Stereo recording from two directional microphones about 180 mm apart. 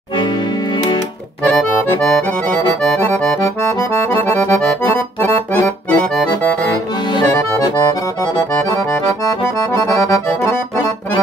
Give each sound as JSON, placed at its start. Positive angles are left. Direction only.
{"t": 2.0, "sound": "accordion", "side_deg": 5}
{"t": 7.2, "sound": "accordion", "side_deg": 20}
{"t": 10.0, "sound": "accordion", "side_deg": 15}